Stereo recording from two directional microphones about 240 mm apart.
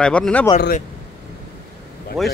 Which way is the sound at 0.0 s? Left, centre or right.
Centre.